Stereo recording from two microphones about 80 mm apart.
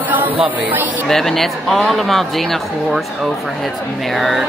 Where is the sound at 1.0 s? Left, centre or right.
Centre.